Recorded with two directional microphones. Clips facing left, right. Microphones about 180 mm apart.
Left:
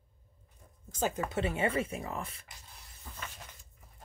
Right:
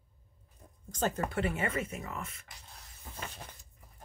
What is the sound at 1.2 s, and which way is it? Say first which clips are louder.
Speech: left 2 dB; 25° left (ahead or behind).